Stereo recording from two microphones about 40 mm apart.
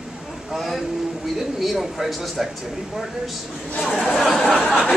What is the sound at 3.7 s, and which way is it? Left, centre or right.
Speech, centre.